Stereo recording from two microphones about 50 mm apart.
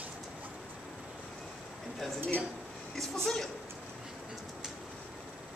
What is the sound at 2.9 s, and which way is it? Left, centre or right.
Speech, centre.